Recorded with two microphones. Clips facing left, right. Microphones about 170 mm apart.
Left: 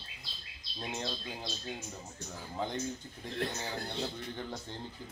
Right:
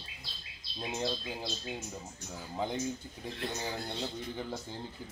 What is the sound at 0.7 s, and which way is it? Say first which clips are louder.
Speech: right 4 dB; 5° right (ahead or behind).